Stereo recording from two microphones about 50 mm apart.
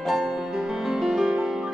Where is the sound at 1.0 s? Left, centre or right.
Centre.